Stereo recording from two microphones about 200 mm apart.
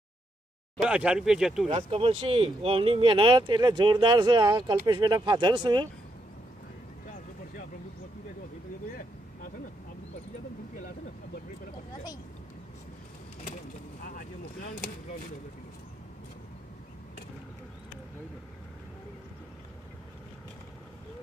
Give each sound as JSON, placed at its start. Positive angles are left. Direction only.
{"t": 0.7, "sound": "speech", "side_deg": -5}
{"t": 1.7, "sound": "speech", "side_deg": -30}
{"t": 14.0, "sound": "vehicle", "side_deg": 45}